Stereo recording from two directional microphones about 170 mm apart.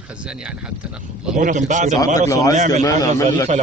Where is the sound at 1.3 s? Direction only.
45° right (ahead or behind).